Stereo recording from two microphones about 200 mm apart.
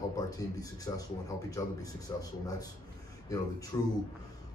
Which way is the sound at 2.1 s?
15° left (ahead or behind).